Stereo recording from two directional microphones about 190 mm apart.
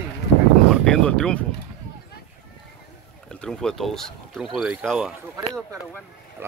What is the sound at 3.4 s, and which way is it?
Speech, 5° left (ahead or behind).